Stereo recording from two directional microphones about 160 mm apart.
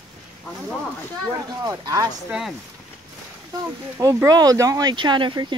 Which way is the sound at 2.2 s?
5° right (ahead or behind).